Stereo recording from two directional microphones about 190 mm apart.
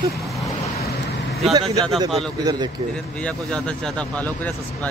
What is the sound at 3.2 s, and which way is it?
Speech, 5° left (ahead or behind).